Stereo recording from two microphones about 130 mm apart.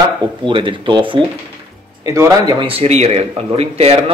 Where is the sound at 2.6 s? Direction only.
50° right (ahead or behind).